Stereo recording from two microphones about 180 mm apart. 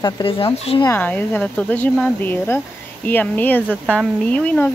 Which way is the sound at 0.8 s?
10° left (ahead or behind).